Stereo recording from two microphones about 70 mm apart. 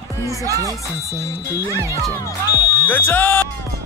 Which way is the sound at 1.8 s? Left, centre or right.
Right.